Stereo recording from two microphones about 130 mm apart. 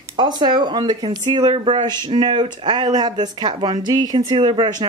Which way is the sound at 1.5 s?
50° right (ahead or behind).